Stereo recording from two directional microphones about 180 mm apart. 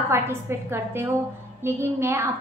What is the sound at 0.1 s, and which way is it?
A woman's voice, 15° right (ahead or behind).